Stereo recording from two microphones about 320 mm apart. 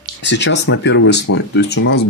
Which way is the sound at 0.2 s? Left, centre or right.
Left.